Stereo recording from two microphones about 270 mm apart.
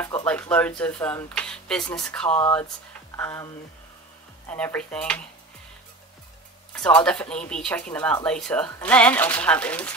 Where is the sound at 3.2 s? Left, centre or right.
Centre.